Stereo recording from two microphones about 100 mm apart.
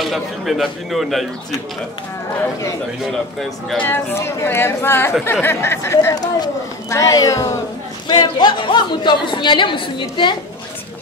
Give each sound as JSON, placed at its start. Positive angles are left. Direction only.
{"t": 0.0, "sound": "a man's voice", "side_deg": 0}
{"t": 3.0, "sound": "a man's voice", "side_deg": 5}
{"t": 3.7, "sound": "speech", "side_deg": 20}
{"t": 6.1, "sound": "speech", "side_deg": 40}
{"t": 8.1, "sound": "a woman's voice", "side_deg": 50}